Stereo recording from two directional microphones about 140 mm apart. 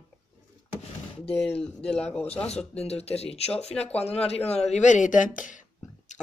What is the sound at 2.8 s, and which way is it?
Speech, 45° left (ahead or behind).